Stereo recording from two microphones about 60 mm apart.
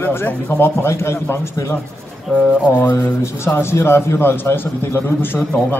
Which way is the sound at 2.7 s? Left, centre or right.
Left.